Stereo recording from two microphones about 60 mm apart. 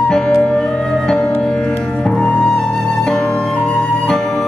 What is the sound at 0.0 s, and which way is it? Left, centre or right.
Music, centre.